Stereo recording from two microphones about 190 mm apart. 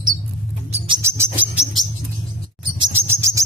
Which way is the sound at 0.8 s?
20° right (ahead or behind).